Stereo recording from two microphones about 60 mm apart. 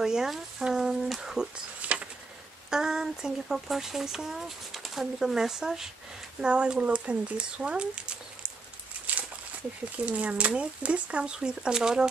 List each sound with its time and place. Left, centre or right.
0.0 s speech: centre
1.8 s a sound: right
2.7 s speech: centre
10.0 s speech: right